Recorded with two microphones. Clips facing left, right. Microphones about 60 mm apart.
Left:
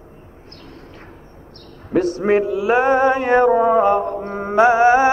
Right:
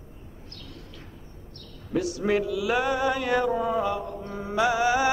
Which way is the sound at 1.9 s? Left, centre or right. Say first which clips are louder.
Left 8 dB; left.